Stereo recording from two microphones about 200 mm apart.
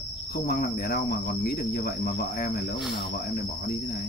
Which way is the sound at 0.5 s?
50° left (ahead or behind).